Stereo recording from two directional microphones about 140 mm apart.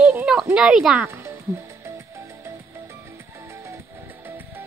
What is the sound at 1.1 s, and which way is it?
Music, 20° right (ahead or behind).